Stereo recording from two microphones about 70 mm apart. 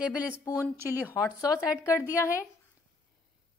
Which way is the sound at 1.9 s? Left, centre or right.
Left.